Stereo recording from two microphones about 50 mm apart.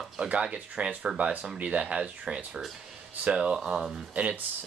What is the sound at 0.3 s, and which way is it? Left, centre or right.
Speech, right.